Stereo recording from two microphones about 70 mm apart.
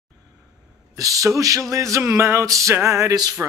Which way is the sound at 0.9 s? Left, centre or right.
Right.